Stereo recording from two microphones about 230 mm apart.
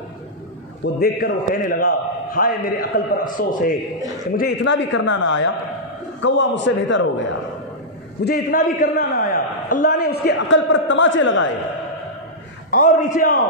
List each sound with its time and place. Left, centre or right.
0.9 s a man's voice: left
4.4 s a man's voice: left
8.3 s a man's voice: left
12.7 s a man's voice: left